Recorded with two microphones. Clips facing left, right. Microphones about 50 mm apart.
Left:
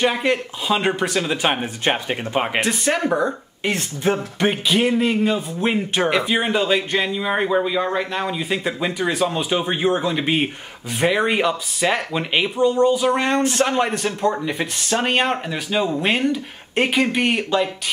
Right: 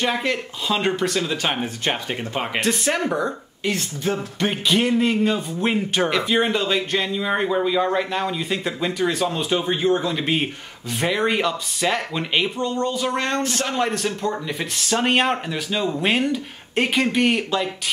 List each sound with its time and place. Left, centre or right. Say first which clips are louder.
0.0 s speech: left 3 dB; centre
2.6 s speech: left 1 dB; centre
3.6 s speech: left 3 dB; left
4.5 s speech: left 1 dB; centre